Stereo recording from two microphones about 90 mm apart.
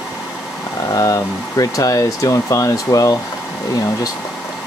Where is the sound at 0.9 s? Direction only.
40° left (ahead or behind).